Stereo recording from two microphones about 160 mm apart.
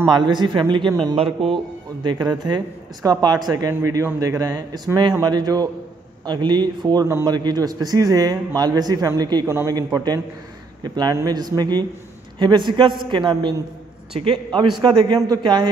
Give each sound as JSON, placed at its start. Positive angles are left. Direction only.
{"t": 0.1, "sound": "a man's voice", "side_deg": -30}
{"t": 2.0, "sound": "a man's voice", "side_deg": -25}